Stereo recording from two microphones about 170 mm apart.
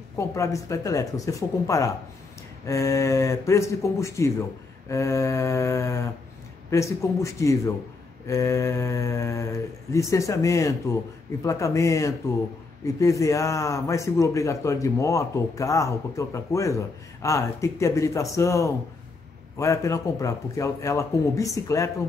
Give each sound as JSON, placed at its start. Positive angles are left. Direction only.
{"t": 0.2, "sound": "a man's voice", "side_deg": 20}